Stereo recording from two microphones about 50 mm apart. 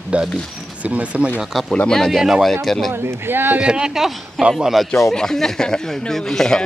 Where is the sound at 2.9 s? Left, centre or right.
Right.